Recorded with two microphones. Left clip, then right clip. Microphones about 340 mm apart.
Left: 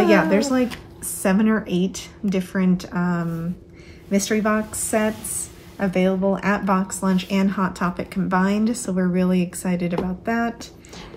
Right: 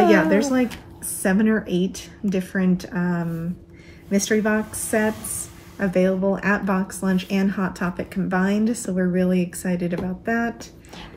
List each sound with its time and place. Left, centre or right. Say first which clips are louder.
0.0 s a woman's voice: even; centre
4.3 s speech: right 1 dB; centre